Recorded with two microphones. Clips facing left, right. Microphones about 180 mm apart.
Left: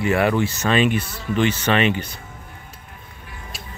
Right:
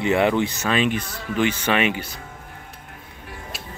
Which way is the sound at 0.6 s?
Centre (ahead or behind).